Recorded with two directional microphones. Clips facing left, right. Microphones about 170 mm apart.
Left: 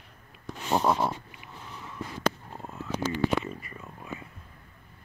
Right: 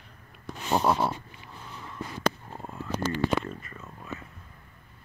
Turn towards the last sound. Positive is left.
turn(degrees=10)  # may be behind; listen again after turning